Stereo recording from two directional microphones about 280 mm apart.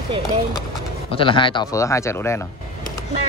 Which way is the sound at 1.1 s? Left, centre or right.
Centre.